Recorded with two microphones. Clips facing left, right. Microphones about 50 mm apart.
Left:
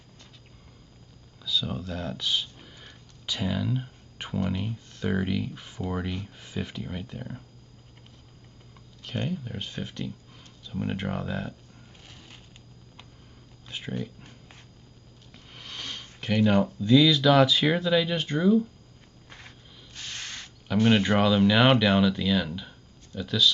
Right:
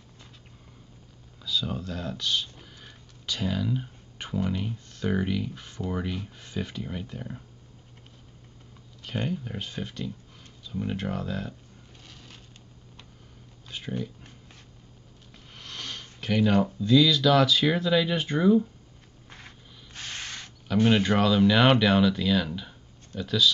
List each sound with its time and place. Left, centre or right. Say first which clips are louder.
1.4 s speech: even; centre
9.0 s speech: right 1 dB; centre
10.8 s speech: even; centre
12.0 s a sound: right 1 dB; centre
13.7 s speech: even; centre
15.3 s speech: even; centre
19.2 s a sound: even; centre
19.9 s ratchet: right 1 dB; centre
20.6 s speech: even; centre